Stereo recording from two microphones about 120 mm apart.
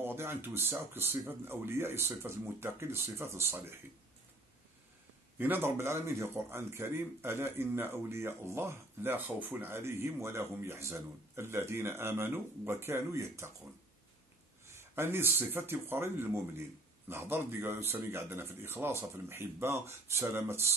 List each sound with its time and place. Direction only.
0.0 s a man's voice: 20° right (ahead or behind)
5.4 s a man's voice: 20° right (ahead or behind)
14.8 s a man's voice: 20° right (ahead or behind)